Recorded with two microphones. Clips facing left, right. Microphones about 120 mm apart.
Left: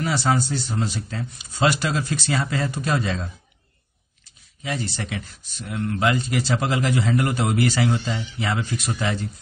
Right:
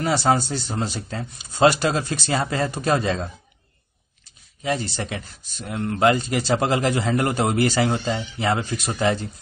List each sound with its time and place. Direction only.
0.0 s speech: 35° right (ahead or behind)
4.6 s speech: 35° right (ahead or behind)